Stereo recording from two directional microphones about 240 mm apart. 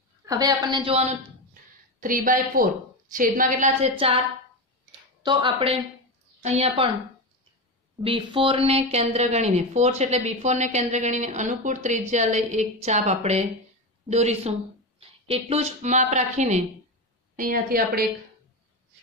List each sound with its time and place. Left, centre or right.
0.2 s a woman's voice: centre
5.2 s a woman's voice: centre
8.0 s a woman's voice: right